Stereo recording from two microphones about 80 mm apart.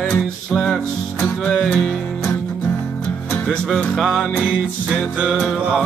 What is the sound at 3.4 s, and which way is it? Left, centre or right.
Music, centre.